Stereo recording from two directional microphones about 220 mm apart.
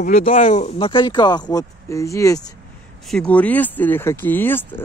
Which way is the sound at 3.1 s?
5° left (ahead or behind).